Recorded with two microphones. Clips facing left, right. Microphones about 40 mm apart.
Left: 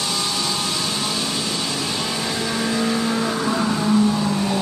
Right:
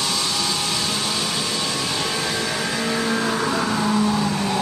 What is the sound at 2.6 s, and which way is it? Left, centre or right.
Vehicle, centre.